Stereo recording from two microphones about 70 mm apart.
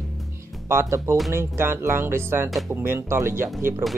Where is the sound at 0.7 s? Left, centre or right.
Right.